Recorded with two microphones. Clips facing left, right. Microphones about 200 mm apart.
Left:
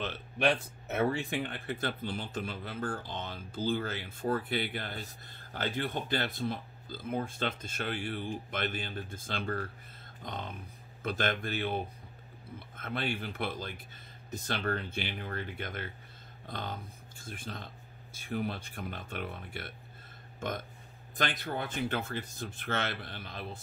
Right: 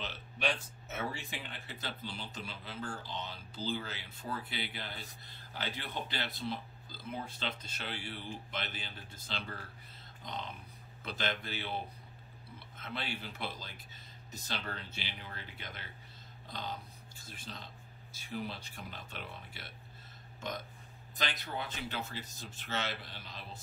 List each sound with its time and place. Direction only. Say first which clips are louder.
0.0 s speech: left 7 dB; 55° left (ahead or behind)
20.3 s burping: left 4 dB; 55° left (ahead or behind)
21.2 s speech: left 5 dB; 55° left (ahead or behind)